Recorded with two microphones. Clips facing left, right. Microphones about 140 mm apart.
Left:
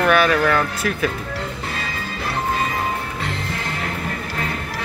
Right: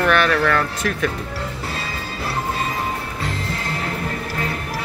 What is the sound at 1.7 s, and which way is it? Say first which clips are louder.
Music: even; 30° right (ahead or behind).